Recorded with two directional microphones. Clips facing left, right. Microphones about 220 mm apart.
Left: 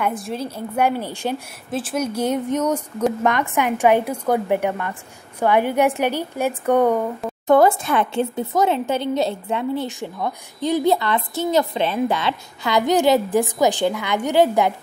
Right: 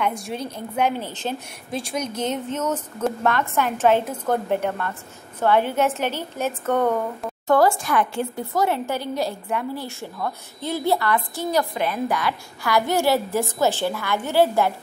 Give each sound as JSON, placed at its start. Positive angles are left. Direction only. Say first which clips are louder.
{"t": 0.0, "sound": "a woman's voice", "louder": "left 2 dB", "side_deg": 0}